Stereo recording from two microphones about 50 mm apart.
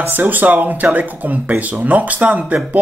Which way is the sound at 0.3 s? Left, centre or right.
Right.